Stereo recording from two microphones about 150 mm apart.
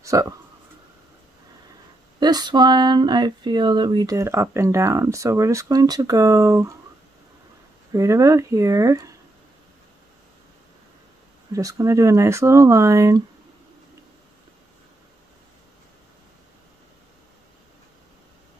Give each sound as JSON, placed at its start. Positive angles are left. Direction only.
{"t": 0.0, "sound": "speech", "side_deg": -20}
{"t": 2.1, "sound": "speech", "side_deg": -30}
{"t": 7.9, "sound": "speech", "side_deg": -20}
{"t": 11.5, "sound": "speech", "side_deg": -20}